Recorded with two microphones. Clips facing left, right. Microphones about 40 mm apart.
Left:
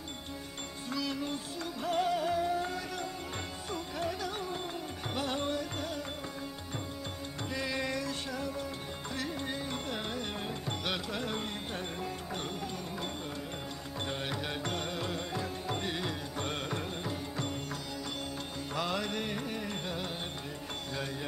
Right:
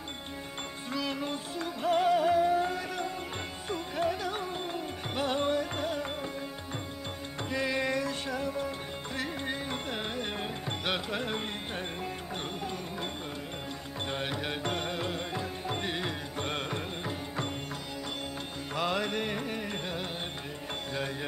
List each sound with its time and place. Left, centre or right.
0.9 s music: right
7.5 s music: right
14.0 s music: right
18.8 s music: right